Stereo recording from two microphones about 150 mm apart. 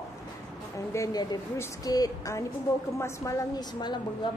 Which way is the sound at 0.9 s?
25° left (ahead or behind).